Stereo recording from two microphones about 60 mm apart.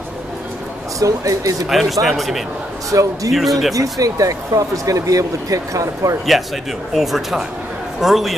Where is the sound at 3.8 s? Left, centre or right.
Right.